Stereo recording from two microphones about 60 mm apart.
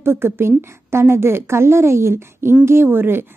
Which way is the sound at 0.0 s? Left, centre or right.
Right.